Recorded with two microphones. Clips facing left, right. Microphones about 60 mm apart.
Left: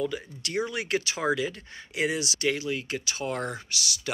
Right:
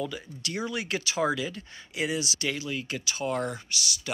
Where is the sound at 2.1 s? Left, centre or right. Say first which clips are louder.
Even; left.